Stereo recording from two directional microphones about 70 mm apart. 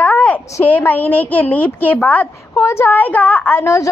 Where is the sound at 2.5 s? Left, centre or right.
Left.